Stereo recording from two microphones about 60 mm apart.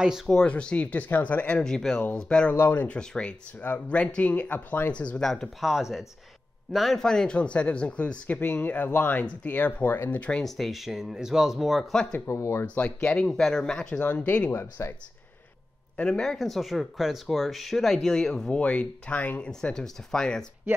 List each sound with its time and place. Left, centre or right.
0.3 s speech: centre
1.6 s speech: centre
2.5 s speech: left
3.0 s speech: centre; by 4.9 s left
4.9 s speech: left
5.2 s speech: centre
7.1 s speech: centre; by 10.2 s left
10.4 s speech: centre
11.9 s speech: centre
12.3 s speech: left
12.6 s speech: left
14.0 s speech: left
14.5 s speech: left
16.0 s speech: centre